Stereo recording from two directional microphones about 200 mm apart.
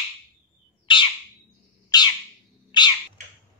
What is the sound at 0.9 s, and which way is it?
Bird, 25° left (ahead or behind).